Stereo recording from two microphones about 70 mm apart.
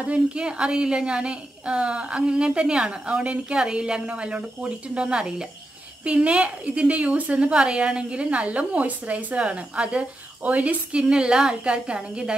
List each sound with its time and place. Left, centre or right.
0.0 s a woman's voice: centre